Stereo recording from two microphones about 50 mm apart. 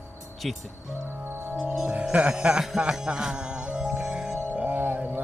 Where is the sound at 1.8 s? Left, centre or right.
Right.